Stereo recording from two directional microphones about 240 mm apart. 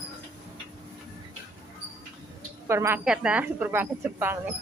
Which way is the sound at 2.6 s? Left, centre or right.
Centre.